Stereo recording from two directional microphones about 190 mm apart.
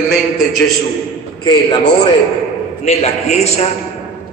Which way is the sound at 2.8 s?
35° left (ahead or behind).